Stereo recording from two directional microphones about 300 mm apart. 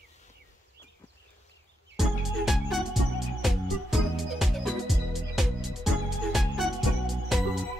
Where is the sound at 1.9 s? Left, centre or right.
Centre.